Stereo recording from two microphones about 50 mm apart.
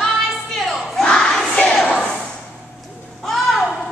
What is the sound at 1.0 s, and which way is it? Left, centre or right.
Crowd, centre.